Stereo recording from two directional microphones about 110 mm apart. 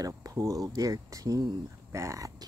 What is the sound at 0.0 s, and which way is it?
Speech, 35° right (ahead or behind).